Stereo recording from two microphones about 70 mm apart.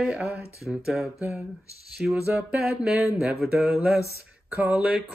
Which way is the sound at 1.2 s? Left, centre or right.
Right.